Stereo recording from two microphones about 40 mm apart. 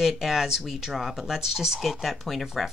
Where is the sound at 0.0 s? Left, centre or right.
Centre.